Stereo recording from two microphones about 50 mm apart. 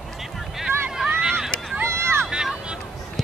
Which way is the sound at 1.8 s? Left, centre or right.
Right.